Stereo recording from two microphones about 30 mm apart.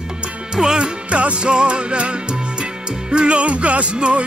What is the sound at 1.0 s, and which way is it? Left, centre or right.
Music, right.